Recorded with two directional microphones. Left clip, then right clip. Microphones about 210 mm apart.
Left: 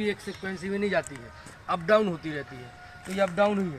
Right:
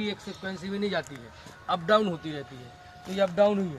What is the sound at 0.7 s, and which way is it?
A man's voice, 15° left (ahead or behind).